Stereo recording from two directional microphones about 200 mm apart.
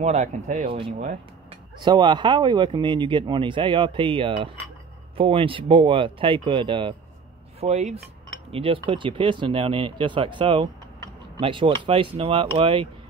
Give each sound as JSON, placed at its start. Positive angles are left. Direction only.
{"t": 0.0, "sound": "speech", "side_deg": -35}